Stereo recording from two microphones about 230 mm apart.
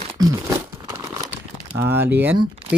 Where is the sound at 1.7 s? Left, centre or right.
Centre.